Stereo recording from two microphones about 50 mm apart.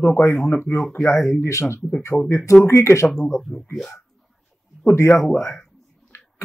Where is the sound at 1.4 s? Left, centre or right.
Left.